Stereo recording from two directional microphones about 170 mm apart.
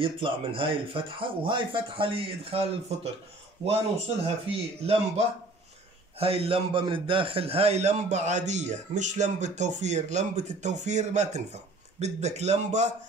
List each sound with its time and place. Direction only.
0.0 s speech: 30° right (ahead or behind)
4.5 s a man's voice: 40° right (ahead or behind)